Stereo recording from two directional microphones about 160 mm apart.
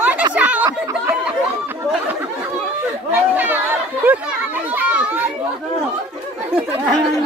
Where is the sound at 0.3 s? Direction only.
10° right (ahead or behind).